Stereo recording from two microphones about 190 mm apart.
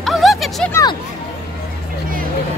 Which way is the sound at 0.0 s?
Centre (ahead or behind).